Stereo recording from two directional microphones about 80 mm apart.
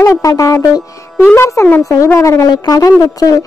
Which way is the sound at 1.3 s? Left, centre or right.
Left.